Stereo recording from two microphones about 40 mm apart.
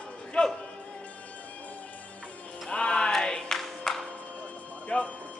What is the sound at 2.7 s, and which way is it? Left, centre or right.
Music, left.